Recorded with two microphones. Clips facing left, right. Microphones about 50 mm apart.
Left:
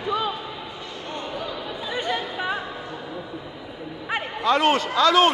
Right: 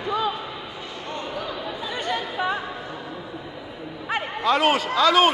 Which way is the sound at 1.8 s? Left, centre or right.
Centre.